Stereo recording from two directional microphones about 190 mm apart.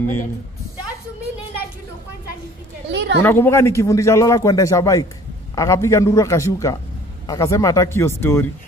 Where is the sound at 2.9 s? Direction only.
65° right (ahead or behind).